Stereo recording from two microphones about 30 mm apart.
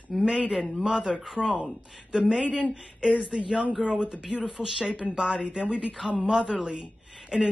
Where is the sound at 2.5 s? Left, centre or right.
Right.